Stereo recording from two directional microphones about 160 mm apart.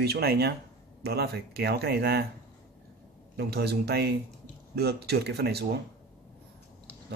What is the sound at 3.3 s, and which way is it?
Speech, 90° right.